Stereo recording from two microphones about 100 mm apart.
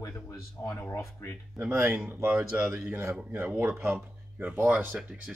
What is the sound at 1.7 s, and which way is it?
Speech, 25° right (ahead or behind).